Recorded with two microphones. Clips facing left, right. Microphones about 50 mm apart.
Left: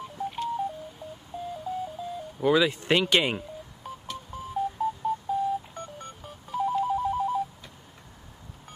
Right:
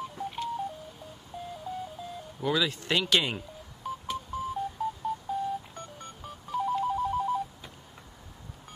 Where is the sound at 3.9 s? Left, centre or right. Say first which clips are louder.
Right 5 dB; centre.